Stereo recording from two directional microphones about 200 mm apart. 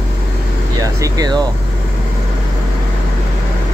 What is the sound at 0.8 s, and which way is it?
Speech, 20° right (ahead or behind).